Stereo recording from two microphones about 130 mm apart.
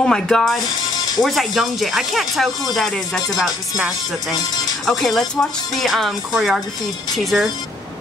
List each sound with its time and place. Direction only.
0.0 s speech: 5° left (ahead or behind)
0.9 s music: 30° left (ahead or behind)
1.2 s speech: centre (ahead or behind)